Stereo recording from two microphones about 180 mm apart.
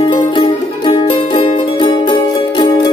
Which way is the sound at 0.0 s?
25° left (ahead or behind).